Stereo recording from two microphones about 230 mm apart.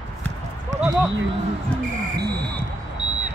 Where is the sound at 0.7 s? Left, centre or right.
Right.